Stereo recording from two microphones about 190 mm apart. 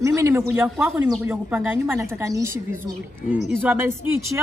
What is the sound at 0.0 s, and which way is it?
Speech, 15° right (ahead or behind).